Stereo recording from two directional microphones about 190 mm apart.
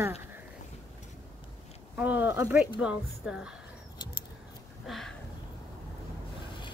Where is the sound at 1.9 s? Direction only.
10° right (ahead or behind).